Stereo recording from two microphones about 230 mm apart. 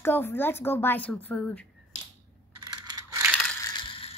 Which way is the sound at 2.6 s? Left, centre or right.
Centre.